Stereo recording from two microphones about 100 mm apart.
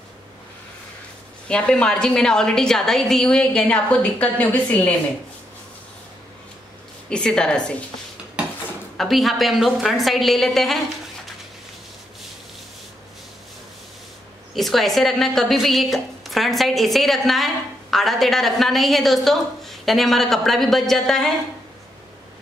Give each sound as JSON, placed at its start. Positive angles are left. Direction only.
{"t": 1.5, "sound": "a woman's voice", "side_deg": 10}
{"t": 7.1, "sound": "a woman's voice", "side_deg": 10}
{"t": 8.9, "sound": "a woman's voice", "side_deg": 0}
{"t": 14.5, "sound": "a woman's voice", "side_deg": 0}